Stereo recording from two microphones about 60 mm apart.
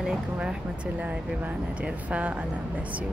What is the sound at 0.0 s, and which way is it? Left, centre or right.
Speech, centre.